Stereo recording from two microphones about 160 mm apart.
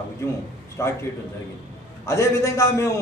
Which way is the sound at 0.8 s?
20° left (ahead or behind).